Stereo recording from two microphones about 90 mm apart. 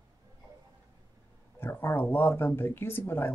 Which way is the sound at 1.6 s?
25° left (ahead or behind).